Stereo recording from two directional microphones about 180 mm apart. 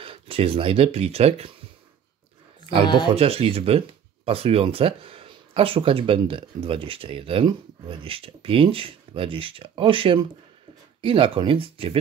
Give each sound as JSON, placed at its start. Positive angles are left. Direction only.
{"t": 0.0, "sound": "speech", "side_deg": -30}
{"t": 3.2, "sound": "speech", "side_deg": -30}